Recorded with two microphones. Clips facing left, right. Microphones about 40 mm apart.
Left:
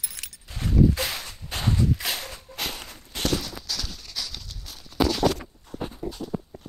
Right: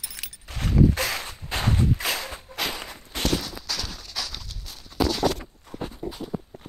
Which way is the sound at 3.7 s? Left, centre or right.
Right.